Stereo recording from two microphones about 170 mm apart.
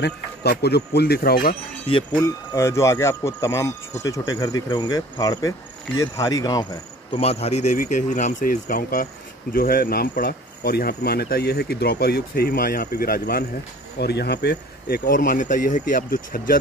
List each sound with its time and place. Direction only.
0.0 s speech: 70° left (ahead or behind)
1.9 s speech: 35° left (ahead or behind)
2.2 s speech: 15° left (ahead or behind)
7.1 s speech: 35° left (ahead or behind); by 13.5 s 60° left (ahead or behind)
13.9 s speech: 75° left (ahead or behind); by 16.5 s 55° left (ahead or behind)